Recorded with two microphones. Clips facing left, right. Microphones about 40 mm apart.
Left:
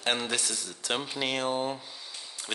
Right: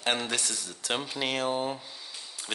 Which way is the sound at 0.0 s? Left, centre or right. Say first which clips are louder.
Even; centre.